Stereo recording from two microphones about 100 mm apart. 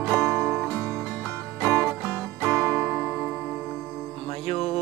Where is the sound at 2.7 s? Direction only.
5° left (ahead or behind).